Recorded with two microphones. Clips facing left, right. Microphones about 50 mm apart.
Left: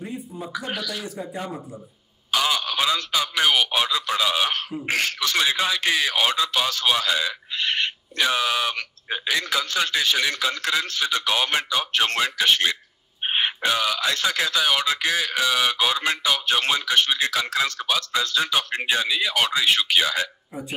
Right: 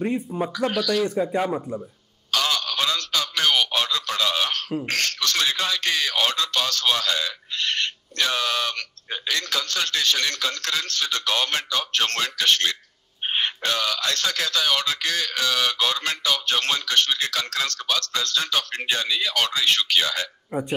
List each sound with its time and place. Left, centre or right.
0.3 s speech: right
0.7 s speech: centre
1.0 s speech: right
2.3 s a sound: centre
4.8 s speech: centre